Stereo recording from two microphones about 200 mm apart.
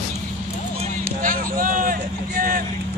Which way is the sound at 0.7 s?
40° right (ahead or behind).